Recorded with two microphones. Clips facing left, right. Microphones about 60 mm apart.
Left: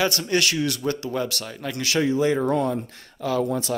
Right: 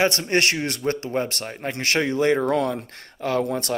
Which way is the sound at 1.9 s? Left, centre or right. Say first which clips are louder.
Even; right.